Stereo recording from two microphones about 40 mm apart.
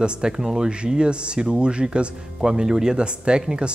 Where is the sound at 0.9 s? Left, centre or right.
Right.